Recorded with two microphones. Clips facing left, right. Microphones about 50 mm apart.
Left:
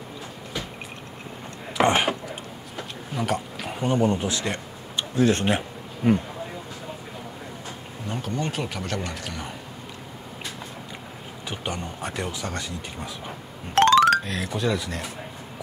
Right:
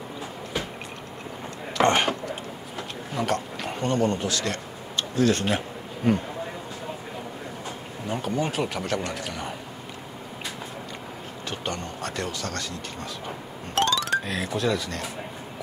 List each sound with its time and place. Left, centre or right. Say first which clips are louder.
1.8 s speech: even; centre
8.1 s speech: right 2 dB; centre
11.5 s speech: left 1 dB; centre
13.7 s music: left 9 dB; left
14.2 s speech: even; centre